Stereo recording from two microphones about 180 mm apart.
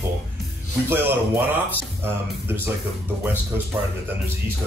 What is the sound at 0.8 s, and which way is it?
Music, 10° right (ahead or behind).